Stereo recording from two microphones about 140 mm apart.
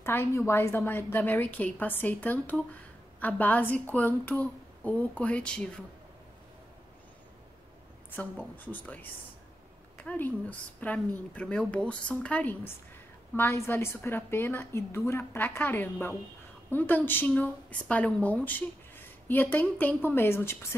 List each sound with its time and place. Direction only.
0.0 s speech: 15° left (ahead or behind)
8.2 s speech: 10° left (ahead or behind)
10.0 s speech: 15° left (ahead or behind)